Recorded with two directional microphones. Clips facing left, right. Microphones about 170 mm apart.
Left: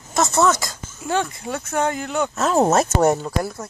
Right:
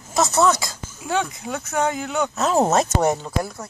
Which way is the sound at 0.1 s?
Centre (ahead or behind).